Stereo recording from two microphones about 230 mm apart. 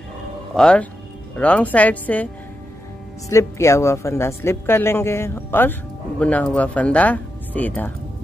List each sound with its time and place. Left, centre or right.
0.6 s speech: centre
3.3 s speech: centre